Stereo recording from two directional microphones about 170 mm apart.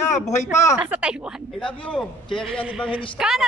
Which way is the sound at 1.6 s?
5° left (ahead or behind).